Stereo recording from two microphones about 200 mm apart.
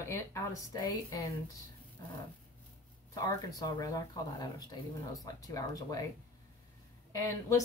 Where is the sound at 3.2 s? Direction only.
20° left (ahead or behind).